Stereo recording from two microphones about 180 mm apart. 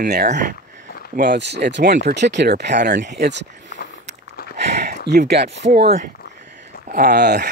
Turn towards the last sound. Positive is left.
turn(degrees=-65)  # may be behind; listen again after turning